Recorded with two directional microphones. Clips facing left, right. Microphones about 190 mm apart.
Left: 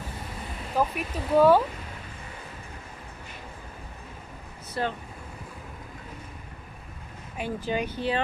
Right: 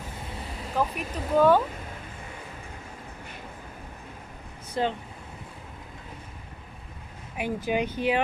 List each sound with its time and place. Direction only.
0.7 s speech: 5° left (ahead or behind)
4.8 s speech: 20° right (ahead or behind)
7.3 s speech: 10° right (ahead or behind)